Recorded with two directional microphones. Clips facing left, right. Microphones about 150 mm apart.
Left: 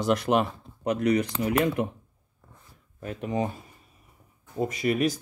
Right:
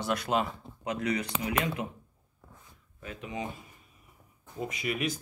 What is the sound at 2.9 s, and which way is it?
Speech, 45° left (ahead or behind).